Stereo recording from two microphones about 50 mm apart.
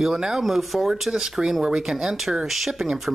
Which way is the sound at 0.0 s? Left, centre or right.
Centre.